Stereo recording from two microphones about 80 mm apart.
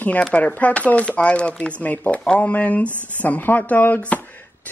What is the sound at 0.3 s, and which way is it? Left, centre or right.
Speech, centre.